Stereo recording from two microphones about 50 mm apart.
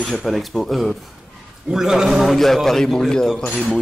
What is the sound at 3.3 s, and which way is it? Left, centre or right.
Speech, left.